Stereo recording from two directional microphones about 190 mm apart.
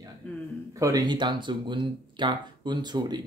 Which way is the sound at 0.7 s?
20° right (ahead or behind).